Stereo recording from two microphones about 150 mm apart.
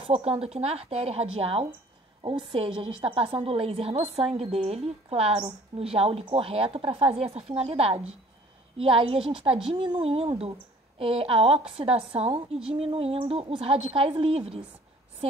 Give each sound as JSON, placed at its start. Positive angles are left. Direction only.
{"t": 0.0, "sound": "a woman's voice", "side_deg": -40}
{"t": 3.0, "sound": "a woman's voice", "side_deg": -40}